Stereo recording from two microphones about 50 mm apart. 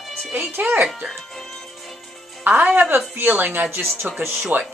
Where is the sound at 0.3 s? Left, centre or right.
Right.